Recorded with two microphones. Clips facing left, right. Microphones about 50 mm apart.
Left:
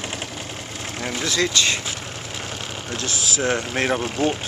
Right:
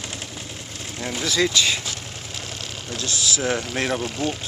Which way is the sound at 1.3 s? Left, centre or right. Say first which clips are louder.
Right 1 dB; centre.